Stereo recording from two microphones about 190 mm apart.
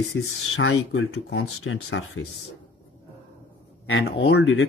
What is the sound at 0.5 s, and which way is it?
Speech, 85° left.